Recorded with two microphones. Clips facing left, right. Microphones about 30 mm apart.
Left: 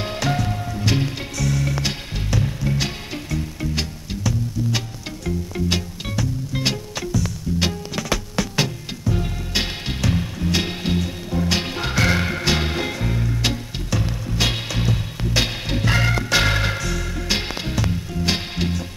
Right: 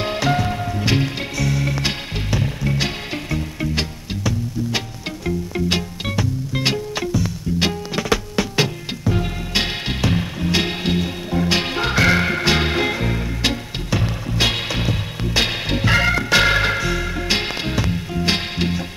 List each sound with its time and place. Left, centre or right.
0.0 s music: centre